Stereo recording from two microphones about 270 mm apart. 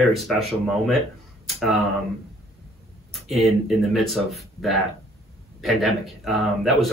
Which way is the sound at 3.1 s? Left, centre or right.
Centre.